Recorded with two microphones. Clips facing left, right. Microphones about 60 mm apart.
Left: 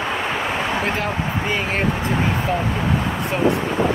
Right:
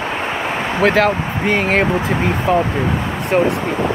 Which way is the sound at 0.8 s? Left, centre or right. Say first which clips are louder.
Right 8 dB; right.